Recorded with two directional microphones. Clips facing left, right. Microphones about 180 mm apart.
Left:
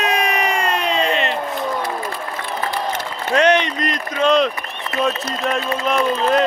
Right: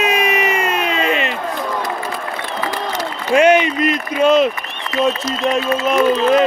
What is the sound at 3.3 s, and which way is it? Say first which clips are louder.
A man's voice: right 4 dB; 10° right (ahead or behind).